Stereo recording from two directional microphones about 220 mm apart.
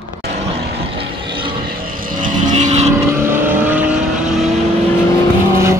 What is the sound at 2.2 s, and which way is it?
Vehicle, 35° right (ahead or behind).